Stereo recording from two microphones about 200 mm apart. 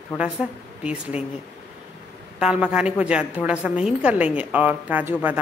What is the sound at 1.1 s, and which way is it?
Speech, 30° left (ahead or behind).